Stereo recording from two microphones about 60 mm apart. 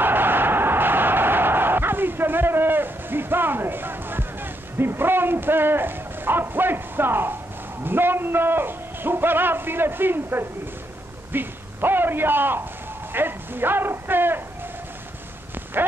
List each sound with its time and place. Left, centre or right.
0.0 s bow-wow: right
7.8 s a man's voice: right
11.3 s a sound: right